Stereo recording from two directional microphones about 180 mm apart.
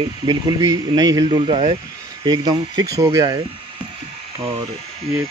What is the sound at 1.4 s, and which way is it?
Speech, 35° right (ahead or behind).